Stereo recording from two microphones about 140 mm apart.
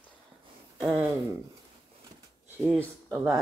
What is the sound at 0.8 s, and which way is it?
Speech, 5° right (ahead or behind).